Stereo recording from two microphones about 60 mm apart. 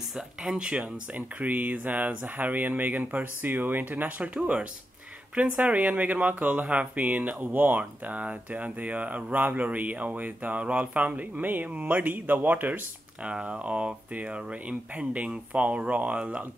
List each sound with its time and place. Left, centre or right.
0.1 s speech: centre; by 12.8 s right
13.2 s speech: centre